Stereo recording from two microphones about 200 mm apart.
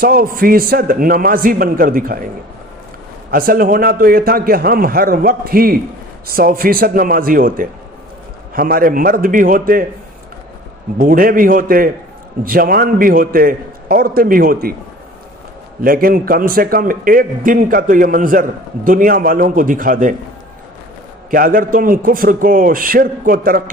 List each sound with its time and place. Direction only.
0.0 s a man's voice: 45° right (ahead or behind)
3.3 s a man's voice: 45° right (ahead or behind)
11.0 s a man's voice: 45° right (ahead or behind)
15.8 s a man's voice: 45° right (ahead or behind)
21.3 s a man's voice: 45° right (ahead or behind)